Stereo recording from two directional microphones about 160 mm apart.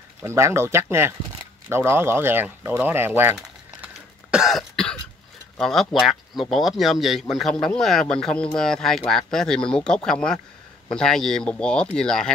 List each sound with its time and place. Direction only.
0.2 s speech: 15° right (ahead or behind)
3.3 s cough: 5° right (ahead or behind)
5.6 s speech: 5° left (ahead or behind)